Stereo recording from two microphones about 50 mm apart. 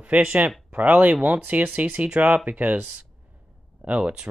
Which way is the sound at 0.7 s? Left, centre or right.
Right.